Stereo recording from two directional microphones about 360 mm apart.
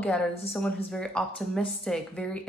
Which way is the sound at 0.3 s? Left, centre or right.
Centre.